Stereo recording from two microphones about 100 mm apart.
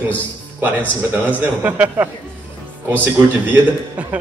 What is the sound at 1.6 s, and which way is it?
Speech, 15° right (ahead or behind).